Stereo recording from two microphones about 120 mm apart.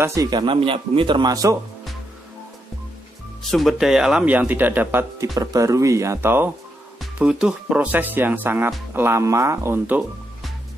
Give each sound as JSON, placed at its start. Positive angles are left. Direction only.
{"t": 0.0, "sound": "speech", "side_deg": -30}
{"t": 3.4, "sound": "speech", "side_deg": 0}
{"t": 5.2, "sound": "speech", "side_deg": -30}
{"t": 7.2, "sound": "speech", "side_deg": -5}